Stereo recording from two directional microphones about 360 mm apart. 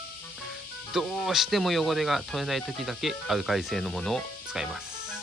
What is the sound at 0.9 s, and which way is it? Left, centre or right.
Speech, centre.